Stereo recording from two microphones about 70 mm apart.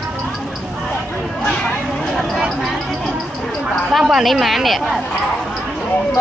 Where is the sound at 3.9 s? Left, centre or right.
Centre.